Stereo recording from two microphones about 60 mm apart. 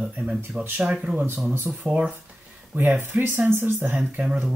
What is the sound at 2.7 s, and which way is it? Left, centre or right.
Speech, right.